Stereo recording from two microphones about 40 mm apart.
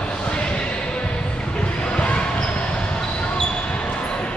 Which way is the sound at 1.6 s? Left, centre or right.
Left.